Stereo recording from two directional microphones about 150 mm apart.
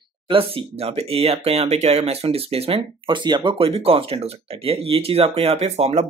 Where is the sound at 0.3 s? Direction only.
35° right (ahead or behind).